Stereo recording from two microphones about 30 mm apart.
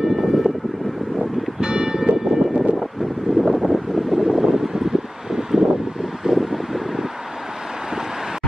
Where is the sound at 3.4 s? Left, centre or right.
Centre.